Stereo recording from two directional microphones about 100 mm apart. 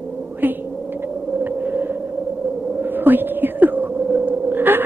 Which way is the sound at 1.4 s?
15° right (ahead or behind).